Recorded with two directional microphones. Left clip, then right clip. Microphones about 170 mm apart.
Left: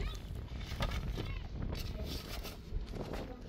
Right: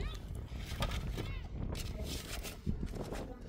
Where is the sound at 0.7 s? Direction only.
20° right (ahead or behind).